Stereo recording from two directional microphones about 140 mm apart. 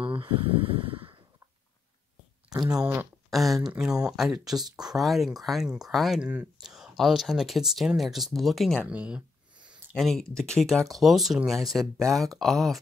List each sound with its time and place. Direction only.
0.0 s a sound: 40° right (ahead or behind)
2.7 s speech: 10° right (ahead or behind)
3.3 s speech: centre (ahead or behind)